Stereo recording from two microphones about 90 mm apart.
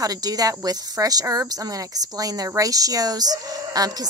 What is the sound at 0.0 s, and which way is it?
Speech, 45° right (ahead or behind).